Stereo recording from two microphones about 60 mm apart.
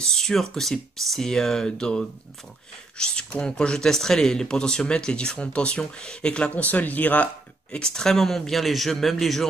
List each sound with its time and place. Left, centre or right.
0.0 s speech: centre; by 7.2 s left
7.7 s speech: centre